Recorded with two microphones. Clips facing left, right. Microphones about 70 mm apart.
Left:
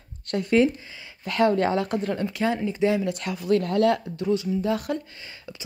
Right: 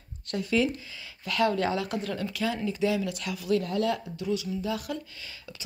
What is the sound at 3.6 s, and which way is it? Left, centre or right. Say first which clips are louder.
Speech: left 6 dB; left.